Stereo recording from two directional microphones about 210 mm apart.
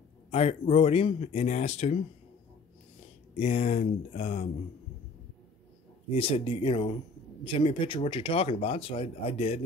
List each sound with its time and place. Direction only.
0.3 s speech: 30° left (ahead or behind)
3.3 s speech: 30° left (ahead or behind)
6.0 s speech: 25° left (ahead or behind)